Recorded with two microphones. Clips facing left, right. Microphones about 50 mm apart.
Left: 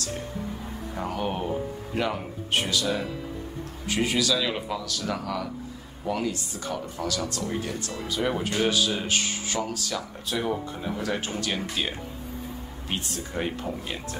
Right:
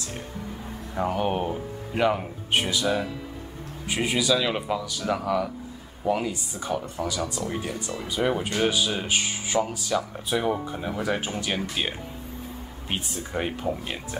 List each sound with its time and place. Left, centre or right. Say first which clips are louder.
1.0 s speech: right 4 dB; centre